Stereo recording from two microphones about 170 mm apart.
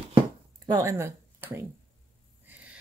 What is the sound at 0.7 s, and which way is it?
Speech, 20° right (ahead or behind).